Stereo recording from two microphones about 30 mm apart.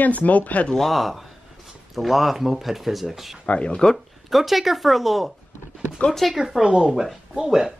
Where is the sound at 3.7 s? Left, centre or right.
Left.